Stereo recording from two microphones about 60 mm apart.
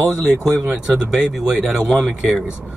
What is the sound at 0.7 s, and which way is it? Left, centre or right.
Speech, right.